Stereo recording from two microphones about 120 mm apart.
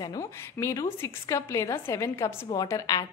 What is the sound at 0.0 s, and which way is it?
A woman's voice, 30° left (ahead or behind).